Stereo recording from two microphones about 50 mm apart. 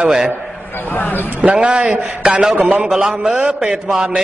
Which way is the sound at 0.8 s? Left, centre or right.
Left.